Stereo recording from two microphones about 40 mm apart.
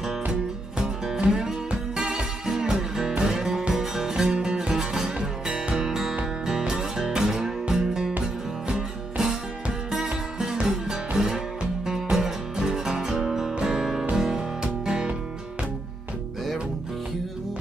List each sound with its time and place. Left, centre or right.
0.3 s music: centre
5.9 s music: centre
10.4 s music: centre